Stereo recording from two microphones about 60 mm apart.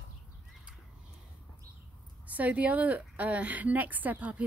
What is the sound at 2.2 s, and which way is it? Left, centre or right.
Speech, right.